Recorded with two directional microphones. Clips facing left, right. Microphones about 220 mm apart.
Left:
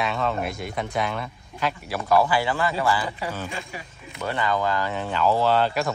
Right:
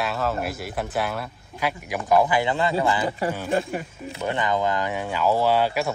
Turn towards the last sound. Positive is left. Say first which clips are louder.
# even
turn(degrees=-10)  # may be behind; listen again after turning